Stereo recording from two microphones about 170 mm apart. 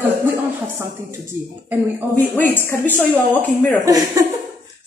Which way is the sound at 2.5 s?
15° left (ahead or behind).